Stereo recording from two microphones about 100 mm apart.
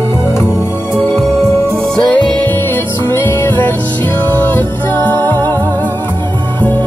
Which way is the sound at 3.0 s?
25° left (ahead or behind).